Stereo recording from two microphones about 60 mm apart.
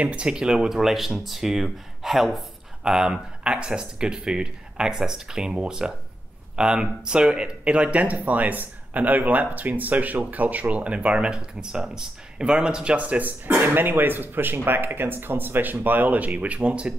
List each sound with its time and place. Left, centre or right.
0.0 s speech: centre